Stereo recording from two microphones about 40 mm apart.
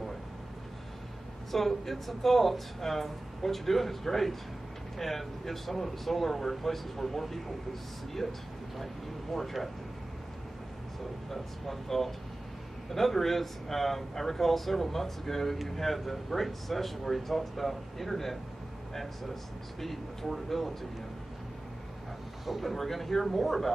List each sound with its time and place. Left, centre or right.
1.5 s speech: centre
11.2 s speech: centre
19.8 s speech: centre
22.5 s speech: centre